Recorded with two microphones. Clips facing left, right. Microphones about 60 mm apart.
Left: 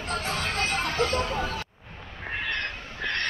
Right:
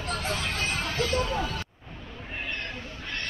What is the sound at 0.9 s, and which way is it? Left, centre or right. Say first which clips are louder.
Speech: left 2 dB; left.